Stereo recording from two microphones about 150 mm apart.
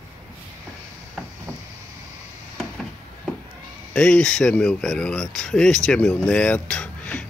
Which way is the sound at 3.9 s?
5° left (ahead or behind).